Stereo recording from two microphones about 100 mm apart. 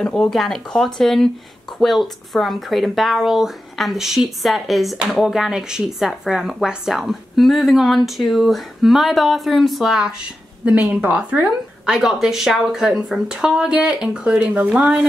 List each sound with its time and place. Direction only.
0.0 s a woman's voice: 5° left (ahead or behind)